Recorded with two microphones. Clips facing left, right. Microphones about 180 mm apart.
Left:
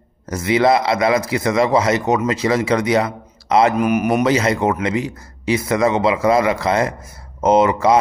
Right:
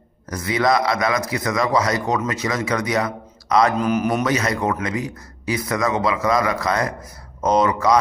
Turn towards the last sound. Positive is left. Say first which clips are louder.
# left 4 dB
turn(degrees=25)  # may be behind; listen again after turning